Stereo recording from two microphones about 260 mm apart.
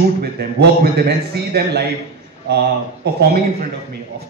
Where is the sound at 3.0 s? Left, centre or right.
Right.